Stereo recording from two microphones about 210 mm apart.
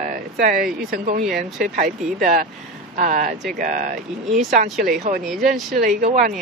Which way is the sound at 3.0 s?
35° right (ahead or behind).